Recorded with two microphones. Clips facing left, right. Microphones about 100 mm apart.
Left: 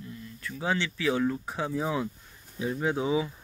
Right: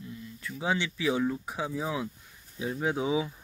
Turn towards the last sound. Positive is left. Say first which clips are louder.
# left 1 dB
turn(degrees=-5)  # may be behind; listen again after turning